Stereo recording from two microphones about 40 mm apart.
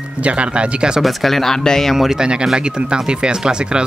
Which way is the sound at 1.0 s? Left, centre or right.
Centre.